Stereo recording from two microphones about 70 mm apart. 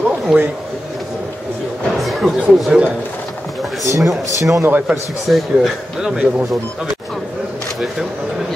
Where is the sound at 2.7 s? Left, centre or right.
Centre.